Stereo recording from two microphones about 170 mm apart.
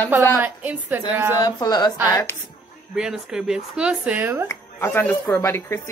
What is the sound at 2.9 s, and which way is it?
Speech, 5° right (ahead or behind).